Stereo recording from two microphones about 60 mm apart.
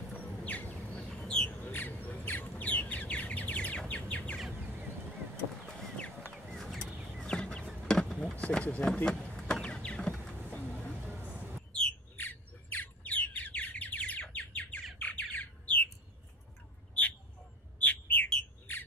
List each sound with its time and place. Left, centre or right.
0.2 s a sound: left
0.9 s bird: centre
1.7 s bird: left
5.7 s chicken: centre
6.5 s a sound: centre
7.2 s chicken: centre
7.9 s a sound: centre
8.4 s speech: left
9.1 s vehicle: centre; by 10.9 s left
11.1 s a sound: right
12.2 s bird: left
17.7 s bird: left